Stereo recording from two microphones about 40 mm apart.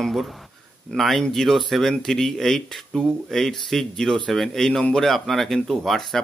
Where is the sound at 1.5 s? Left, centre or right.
Centre.